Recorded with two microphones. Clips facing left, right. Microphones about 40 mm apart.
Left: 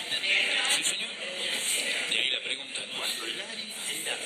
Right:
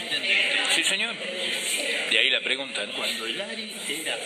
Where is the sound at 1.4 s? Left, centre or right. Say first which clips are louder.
Right 3 dB; centre.